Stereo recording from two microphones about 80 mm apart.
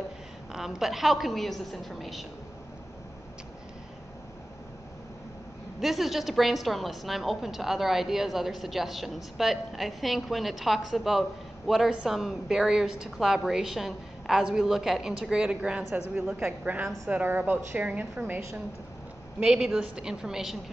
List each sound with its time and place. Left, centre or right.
0.5 s a woman's voice: centre
5.8 s a woman's voice: centre
17.1 s a woman's voice: right
19.4 s a woman's voice: centre